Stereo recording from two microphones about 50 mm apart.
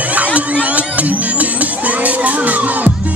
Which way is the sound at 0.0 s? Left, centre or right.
Right.